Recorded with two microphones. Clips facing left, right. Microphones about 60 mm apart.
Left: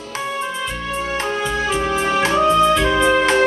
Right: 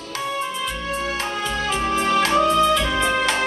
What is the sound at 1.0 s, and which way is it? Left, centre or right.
Music, left.